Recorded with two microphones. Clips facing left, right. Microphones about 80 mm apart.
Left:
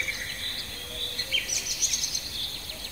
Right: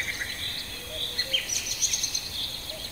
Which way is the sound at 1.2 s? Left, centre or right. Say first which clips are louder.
Even; right.